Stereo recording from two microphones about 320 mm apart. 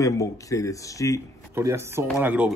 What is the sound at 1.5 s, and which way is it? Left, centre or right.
Speech, centre.